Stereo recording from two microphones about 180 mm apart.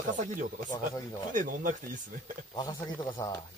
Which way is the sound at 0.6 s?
20° left (ahead or behind).